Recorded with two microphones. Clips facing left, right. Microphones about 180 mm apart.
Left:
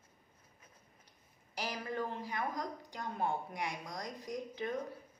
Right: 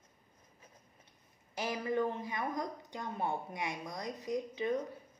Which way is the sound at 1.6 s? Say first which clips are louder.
Right 5 dB; 20° right (ahead or behind).